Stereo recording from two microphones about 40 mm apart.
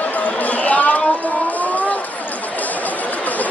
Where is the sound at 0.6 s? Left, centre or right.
Left.